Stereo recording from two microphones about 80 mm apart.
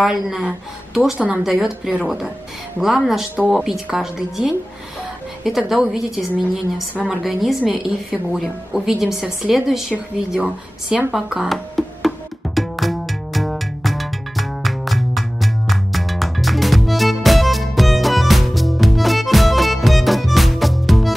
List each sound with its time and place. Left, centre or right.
0.0 s a woman's voice: centre
1.4 s a woman's voice: centre
12.5 s music: centre